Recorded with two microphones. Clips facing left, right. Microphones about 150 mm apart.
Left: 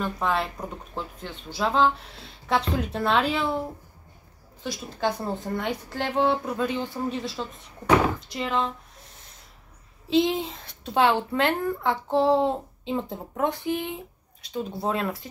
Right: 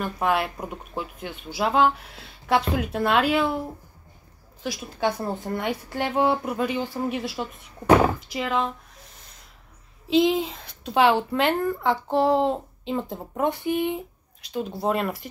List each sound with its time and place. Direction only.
0.0 s speech: 10° right (ahead or behind)
4.6 s speech: 5° right (ahead or behind)
10.0 s speech: centre (ahead or behind)
13.7 s speech: 60° right (ahead or behind)
14.5 s speech: 5° right (ahead or behind)